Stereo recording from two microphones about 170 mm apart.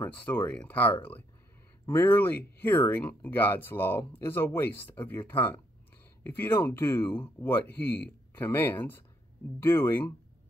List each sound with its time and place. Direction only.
0.0 s speech: 10° left (ahead or behind)